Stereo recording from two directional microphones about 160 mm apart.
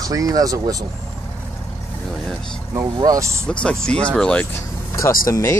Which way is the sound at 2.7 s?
20° right (ahead or behind).